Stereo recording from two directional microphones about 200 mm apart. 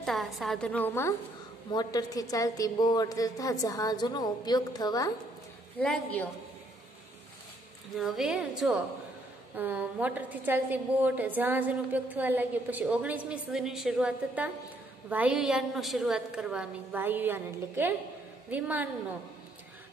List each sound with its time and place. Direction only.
0.0 s a woman's voice: centre (ahead or behind); by 5.1 s 20° left (ahead or behind)
5.8 s a woman's voice: 5° left (ahead or behind)
7.9 s a woman's voice: centre (ahead or behind)